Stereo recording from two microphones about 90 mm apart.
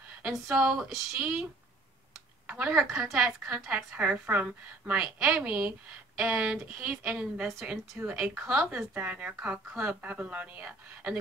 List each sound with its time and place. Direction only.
0.3 s a woman's voice: centre (ahead or behind)